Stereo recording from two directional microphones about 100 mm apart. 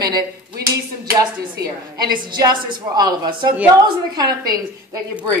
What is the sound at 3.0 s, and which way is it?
A woman's voice, 45° right (ahead or behind).